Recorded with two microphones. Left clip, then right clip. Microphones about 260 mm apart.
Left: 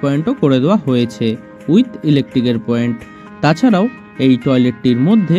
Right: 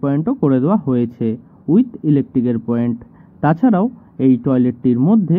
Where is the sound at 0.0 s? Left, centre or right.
Left.